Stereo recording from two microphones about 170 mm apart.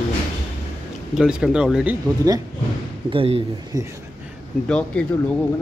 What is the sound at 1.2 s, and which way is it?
Speech, 5° right (ahead or behind).